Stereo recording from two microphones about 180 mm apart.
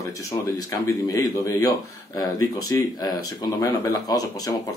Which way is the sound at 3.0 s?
20° left (ahead or behind).